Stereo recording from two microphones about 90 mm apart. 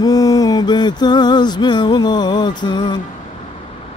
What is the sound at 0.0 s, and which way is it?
Mantra, 45° left (ahead or behind).